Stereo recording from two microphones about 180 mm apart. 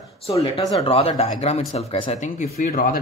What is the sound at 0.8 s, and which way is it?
Speech, 30° left (ahead or behind).